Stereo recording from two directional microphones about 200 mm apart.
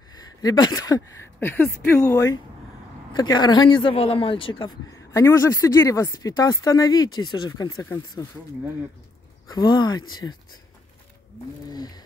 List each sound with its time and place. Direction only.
0.1 s speech: 20° left (ahead or behind)
9.5 s speech: 20° left (ahead or behind)
11.7 s speech: 20° left (ahead or behind)